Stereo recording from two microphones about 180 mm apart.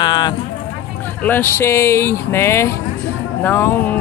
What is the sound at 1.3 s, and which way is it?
Speech, 10° left (ahead or behind).